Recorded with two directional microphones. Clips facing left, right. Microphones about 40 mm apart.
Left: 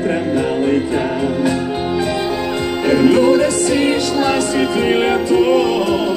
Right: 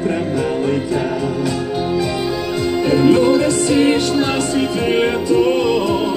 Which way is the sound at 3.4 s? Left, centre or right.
Left.